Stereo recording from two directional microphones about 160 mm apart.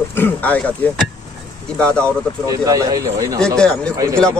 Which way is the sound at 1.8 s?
5° left (ahead or behind).